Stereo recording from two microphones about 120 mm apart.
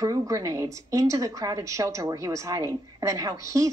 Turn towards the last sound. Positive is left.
turn(degrees=-25)  # may be behind; listen again after turning